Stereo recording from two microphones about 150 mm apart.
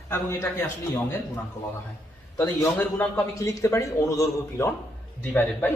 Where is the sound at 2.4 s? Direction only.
10° left (ahead or behind).